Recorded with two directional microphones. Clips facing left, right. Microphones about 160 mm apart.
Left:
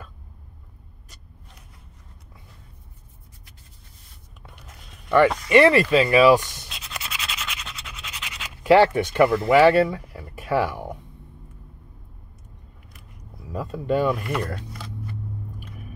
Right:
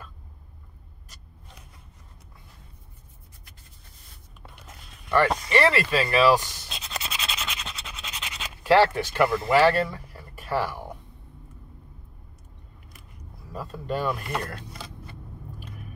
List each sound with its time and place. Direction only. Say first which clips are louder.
5.5 s speech: left 6 dB; 15° left (ahead or behind)
6.7 s a sound: right 2 dB; 25° right (ahead or behind)
8.7 s speech: left 3 dB; 20° left (ahead or behind)
13.6 s speech: left 7 dB; 20° left (ahead or behind)